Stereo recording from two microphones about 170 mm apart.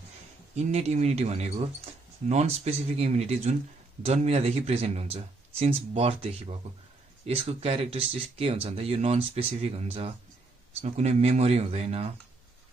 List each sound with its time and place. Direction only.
0.6 s speech: 40° right (ahead or behind)